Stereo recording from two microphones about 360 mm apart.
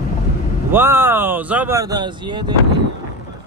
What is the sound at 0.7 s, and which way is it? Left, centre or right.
Speech, centre.